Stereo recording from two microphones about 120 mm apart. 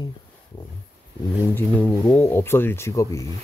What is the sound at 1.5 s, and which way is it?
Speech, 15° left (ahead or behind).